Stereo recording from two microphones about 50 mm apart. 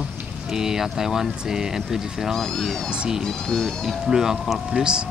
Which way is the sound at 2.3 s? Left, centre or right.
Centre.